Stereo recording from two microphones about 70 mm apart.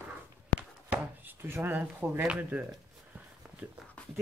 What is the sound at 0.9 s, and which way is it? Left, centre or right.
Chopping, right.